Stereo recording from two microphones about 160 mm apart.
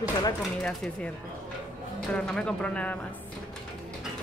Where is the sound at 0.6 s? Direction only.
5° left (ahead or behind).